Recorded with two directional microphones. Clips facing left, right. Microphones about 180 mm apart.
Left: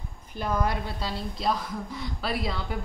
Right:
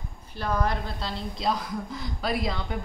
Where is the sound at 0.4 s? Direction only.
10° left (ahead or behind).